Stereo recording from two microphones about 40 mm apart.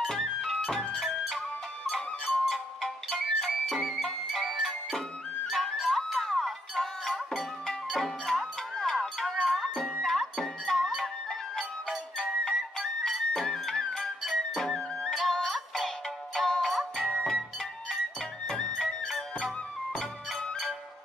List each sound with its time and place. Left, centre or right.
0.5 s music: centre
13.9 s music: centre
14.5 s music: centre
15.1 s music: centre
16.7 s music: centre
18.9 s music: centre